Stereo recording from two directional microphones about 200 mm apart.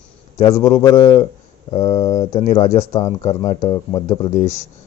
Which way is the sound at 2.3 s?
35° left (ahead or behind).